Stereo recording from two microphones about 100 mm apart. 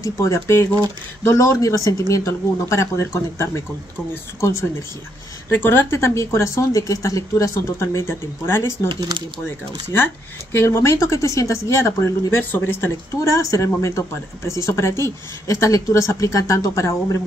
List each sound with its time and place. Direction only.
0.0 s speech: 30° left (ahead or behind)
8.8 s speech: 50° right (ahead or behind)
10.5 s speech: 25° left (ahead or behind)